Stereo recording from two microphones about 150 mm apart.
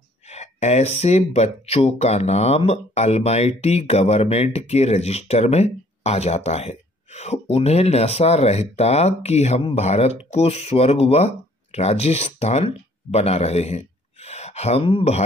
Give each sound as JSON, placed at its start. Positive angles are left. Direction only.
{"t": 0.3, "sound": "speech", "side_deg": 50}